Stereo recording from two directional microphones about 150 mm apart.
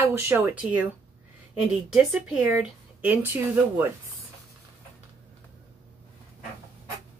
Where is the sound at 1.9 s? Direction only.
5° right (ahead or behind).